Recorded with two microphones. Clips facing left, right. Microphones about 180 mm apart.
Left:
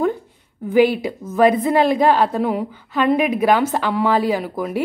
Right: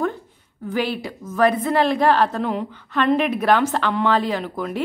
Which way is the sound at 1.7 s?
15° left (ahead or behind).